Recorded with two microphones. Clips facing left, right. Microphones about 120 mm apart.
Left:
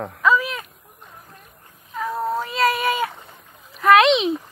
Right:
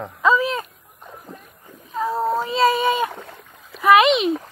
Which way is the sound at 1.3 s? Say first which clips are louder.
Right 5 dB; centre (ahead or behind).